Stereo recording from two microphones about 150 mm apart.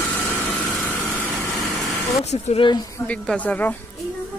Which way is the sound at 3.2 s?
10° left (ahead or behind).